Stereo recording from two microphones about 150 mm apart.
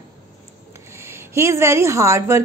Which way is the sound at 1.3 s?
20° right (ahead or behind).